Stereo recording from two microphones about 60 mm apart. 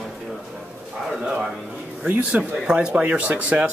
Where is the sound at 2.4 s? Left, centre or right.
Right.